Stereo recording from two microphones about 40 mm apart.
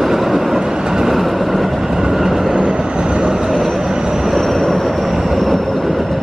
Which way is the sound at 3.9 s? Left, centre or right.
Centre.